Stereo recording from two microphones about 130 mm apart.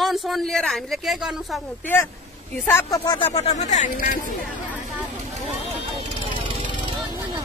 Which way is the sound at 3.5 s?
70° left (ahead or behind).